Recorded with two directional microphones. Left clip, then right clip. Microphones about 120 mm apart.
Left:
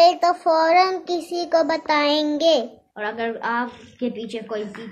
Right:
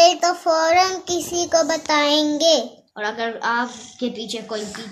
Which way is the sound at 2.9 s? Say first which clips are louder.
Right 1 dB; 25° right (ahead or behind).